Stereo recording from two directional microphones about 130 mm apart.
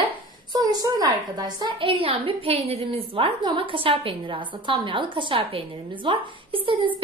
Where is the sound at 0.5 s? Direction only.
30° right (ahead or behind).